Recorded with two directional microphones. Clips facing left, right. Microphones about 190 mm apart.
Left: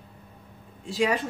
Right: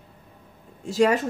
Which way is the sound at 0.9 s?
45° right (ahead or behind).